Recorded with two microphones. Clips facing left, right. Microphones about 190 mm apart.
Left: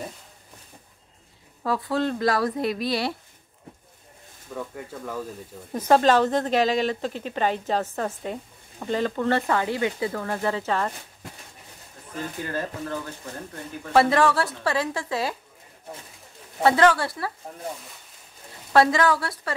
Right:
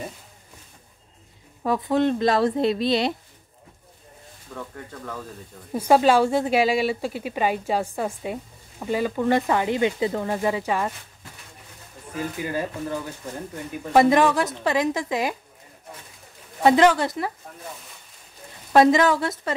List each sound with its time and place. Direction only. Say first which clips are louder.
1.6 s speech: right 4 dB; 20° right (ahead or behind)
4.6 s speech: left 2 dB; 10° left (ahead or behind)
5.7 s speech: right 1 dB; 10° right (ahead or behind)
12.2 s speech: right 3 dB; 10° right (ahead or behind)
16.6 s speech: right 2 dB; 20° right (ahead or behind)
18.7 s speech: right 3 dB; 20° right (ahead or behind)